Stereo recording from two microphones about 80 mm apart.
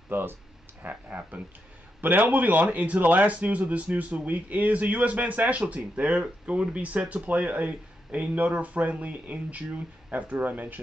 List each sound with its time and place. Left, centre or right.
0.1 s speech: right